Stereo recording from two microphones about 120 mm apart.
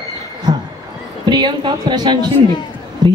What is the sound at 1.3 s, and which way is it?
A woman's voice, 40° right (ahead or behind).